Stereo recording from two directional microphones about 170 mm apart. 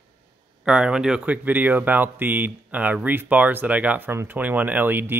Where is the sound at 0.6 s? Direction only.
5° right (ahead or behind).